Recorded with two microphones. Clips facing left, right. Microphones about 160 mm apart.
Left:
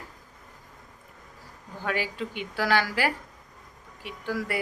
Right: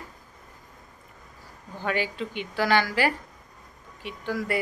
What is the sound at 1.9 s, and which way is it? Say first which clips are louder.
A woman's voice: right 2 dB; 5° left (ahead or behind).